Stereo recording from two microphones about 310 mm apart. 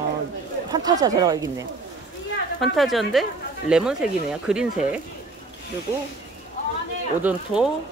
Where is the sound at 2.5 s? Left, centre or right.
Centre.